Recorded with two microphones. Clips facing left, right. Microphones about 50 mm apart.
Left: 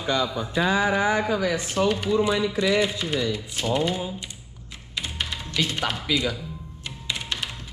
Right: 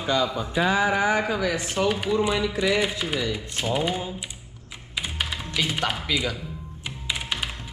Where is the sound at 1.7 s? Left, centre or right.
Centre.